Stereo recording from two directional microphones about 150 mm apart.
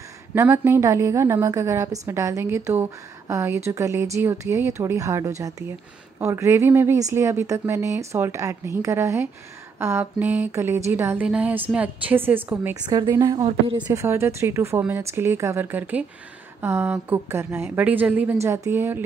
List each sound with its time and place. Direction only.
0.3 s a woman's voice: 15° right (ahead or behind)
12.8 s a woman's voice: 25° right (ahead or behind)
14.0 s a woman's voice: 15° right (ahead or behind)